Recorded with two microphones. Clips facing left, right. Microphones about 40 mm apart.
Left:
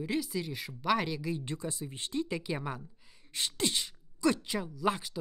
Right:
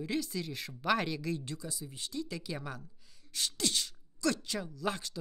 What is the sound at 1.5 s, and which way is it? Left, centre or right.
Speech, left.